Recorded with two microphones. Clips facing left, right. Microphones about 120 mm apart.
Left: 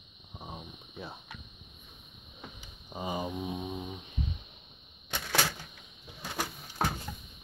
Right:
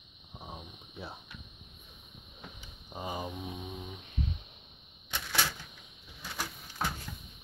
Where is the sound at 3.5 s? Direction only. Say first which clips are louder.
Left 5 dB; 25° left (ahead or behind).